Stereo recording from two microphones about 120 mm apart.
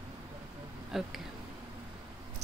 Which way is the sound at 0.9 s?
5° right (ahead or behind).